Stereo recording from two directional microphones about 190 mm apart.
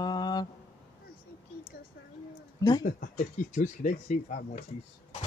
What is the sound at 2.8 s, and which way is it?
Speech, 45° left (ahead or behind).